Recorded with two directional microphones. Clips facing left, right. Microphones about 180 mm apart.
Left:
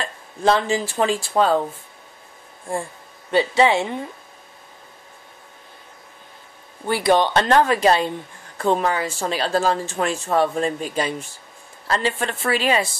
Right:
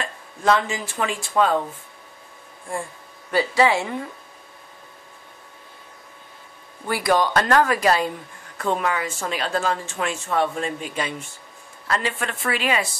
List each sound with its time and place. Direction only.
0.0 s speech: 30° left (ahead or behind)
2.7 s speech: 30° left (ahead or behind)
6.9 s a woman's voice: 25° left (ahead or behind)